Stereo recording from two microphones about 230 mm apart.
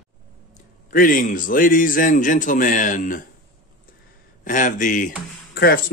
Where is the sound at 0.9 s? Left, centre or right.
Left.